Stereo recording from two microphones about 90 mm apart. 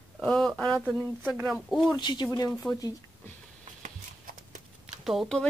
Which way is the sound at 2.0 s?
55° left (ahead or behind).